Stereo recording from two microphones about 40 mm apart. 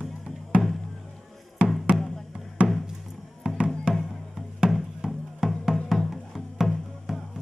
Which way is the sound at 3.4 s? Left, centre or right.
Right.